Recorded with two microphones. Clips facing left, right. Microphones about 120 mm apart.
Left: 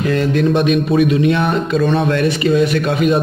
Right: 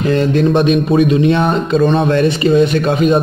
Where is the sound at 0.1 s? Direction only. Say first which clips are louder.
Right 3 dB; 30° right (ahead or behind).